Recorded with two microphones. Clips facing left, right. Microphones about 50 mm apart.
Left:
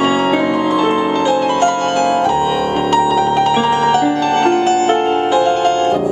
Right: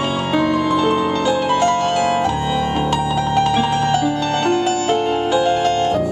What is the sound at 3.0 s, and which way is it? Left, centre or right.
Music, centre.